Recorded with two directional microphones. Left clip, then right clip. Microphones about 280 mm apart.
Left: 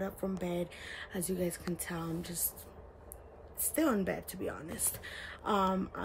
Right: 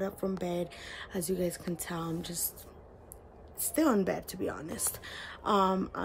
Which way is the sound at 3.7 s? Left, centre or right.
Centre.